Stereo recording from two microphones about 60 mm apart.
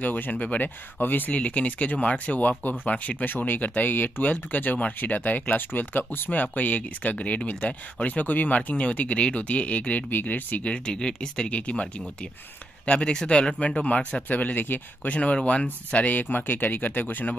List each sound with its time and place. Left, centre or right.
0.0 s speech: left